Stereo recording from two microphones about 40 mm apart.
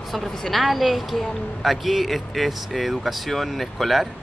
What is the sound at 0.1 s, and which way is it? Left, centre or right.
A woman's voice, centre.